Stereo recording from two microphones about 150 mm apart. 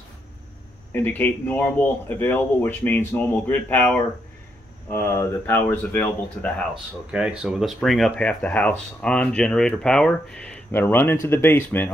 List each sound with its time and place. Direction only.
0.9 s speech: 10° left (ahead or behind)